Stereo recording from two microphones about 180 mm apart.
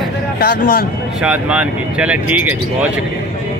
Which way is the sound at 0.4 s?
55° left (ahead or behind).